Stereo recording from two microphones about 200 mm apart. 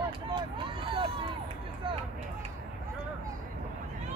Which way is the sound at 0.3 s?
25° right (ahead or behind).